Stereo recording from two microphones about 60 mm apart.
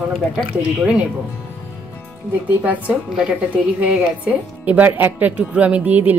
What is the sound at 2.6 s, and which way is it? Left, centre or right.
Speech, right.